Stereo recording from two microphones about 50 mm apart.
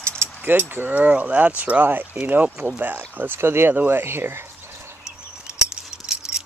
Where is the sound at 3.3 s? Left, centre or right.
Right.